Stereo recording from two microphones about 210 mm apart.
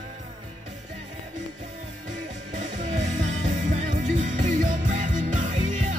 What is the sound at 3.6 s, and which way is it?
Music, 35° right (ahead or behind).